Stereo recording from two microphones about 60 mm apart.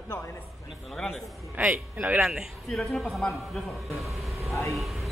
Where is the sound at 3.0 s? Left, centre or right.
Centre.